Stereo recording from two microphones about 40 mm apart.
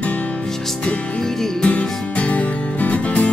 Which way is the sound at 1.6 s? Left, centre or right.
Left.